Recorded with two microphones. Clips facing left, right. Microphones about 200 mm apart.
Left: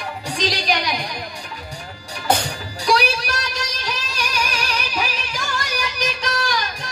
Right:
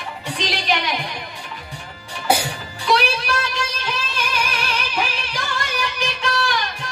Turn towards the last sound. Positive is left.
turn(degrees=40)  # may be behind; listen again after turning